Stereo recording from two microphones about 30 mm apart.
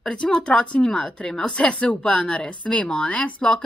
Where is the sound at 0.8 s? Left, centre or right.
Left.